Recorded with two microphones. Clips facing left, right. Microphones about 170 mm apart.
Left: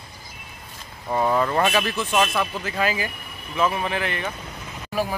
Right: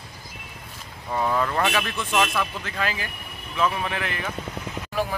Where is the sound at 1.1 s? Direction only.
15° left (ahead or behind).